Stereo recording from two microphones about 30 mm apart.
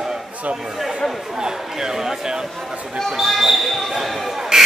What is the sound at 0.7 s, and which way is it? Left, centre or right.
Speech, centre.